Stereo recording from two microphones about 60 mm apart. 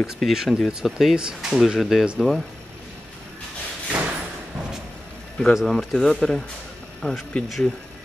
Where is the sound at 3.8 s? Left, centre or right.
Right.